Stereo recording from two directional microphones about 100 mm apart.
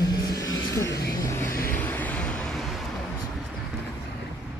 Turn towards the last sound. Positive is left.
turn(degrees=0)  # may be behind; listen again after turning